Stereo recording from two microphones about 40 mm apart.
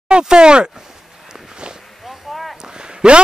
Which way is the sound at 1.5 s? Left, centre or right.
Right.